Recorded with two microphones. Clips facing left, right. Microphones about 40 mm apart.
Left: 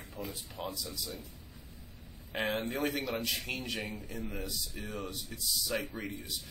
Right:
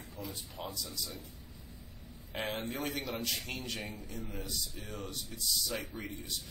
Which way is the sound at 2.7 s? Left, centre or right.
Centre.